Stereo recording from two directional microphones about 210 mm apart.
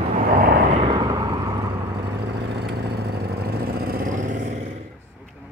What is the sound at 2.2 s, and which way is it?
Vehicle, 50° right (ahead or behind).